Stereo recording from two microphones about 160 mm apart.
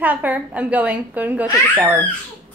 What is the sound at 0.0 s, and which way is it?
A woman's voice, 10° right (ahead or behind).